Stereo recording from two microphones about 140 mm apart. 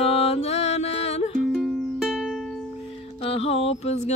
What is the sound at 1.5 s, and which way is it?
Music, centre (ahead or behind).